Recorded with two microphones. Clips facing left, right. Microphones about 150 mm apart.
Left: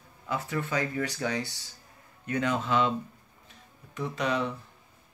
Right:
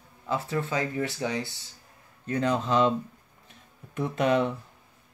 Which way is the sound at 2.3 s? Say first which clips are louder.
Right 2 dB; 35° right (ahead or behind).